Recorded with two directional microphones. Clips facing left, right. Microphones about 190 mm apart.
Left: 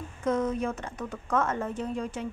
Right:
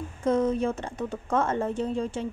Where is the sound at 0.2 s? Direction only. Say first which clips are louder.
Right 3 dB; 30° right (ahead or behind).